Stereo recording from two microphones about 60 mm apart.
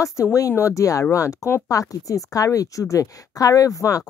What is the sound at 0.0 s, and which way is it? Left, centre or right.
Speech, left.